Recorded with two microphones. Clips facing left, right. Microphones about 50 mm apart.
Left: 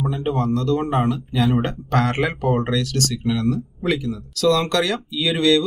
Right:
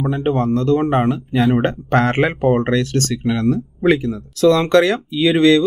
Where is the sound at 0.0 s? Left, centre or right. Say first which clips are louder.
Right 4 dB; right.